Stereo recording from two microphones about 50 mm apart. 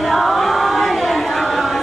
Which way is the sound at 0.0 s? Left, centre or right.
Centre.